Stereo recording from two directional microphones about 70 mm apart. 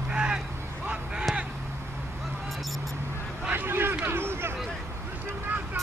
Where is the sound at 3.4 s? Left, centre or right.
Right.